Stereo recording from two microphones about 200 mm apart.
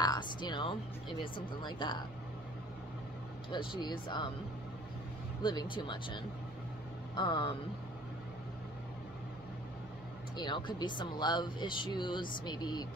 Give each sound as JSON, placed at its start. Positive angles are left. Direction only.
{"t": 0.0, "sound": "music", "side_deg": 20}
{"t": 1.2, "sound": "speech", "side_deg": 25}
{"t": 3.4, "sound": "speech", "side_deg": 25}
{"t": 5.4, "sound": "speech", "side_deg": 20}
{"t": 10.3, "sound": "speech", "side_deg": 20}